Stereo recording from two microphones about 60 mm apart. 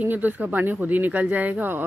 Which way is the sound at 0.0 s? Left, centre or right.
Right.